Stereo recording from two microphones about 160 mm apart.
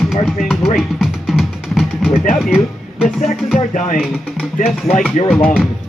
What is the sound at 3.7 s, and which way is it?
Speech, 50° left (ahead or behind).